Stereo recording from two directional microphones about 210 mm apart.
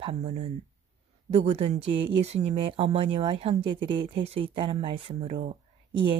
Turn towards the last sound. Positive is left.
turn(degrees=-25)  # may be behind; listen again after turning